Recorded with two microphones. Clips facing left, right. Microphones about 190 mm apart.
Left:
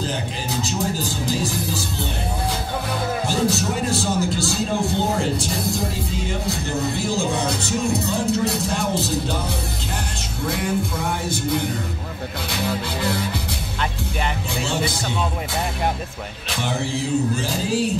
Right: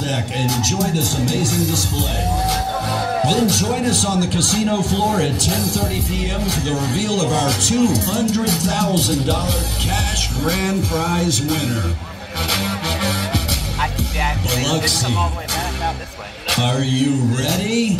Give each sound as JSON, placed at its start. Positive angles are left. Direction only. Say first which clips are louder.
{"t": 0.5, "sound": "speech", "louder": "right 3 dB", "side_deg": -90}
{"t": 3.3, "sound": "a man's voice", "louder": "right 5 dB", "side_deg": -90}
{"t": 10.4, "sound": "a man's voice", "louder": "right 4 dB", "side_deg": -85}
{"t": 12.4, "sound": "music", "louder": "right 2 dB", "side_deg": -90}
{"t": 14.5, "sound": "speech", "louder": "right 7 dB", "side_deg": -85}
{"t": 16.4, "sound": "speech", "louder": "right 6 dB", "side_deg": -80}